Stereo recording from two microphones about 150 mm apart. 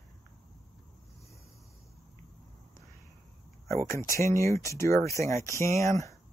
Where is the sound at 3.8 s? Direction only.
20° left (ahead or behind).